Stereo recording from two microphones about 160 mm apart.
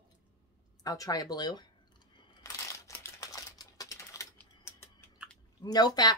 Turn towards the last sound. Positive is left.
turn(degrees=25)  # may be behind; listen again after turning